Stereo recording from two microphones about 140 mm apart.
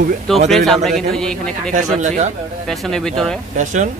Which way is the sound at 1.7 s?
55° right (ahead or behind).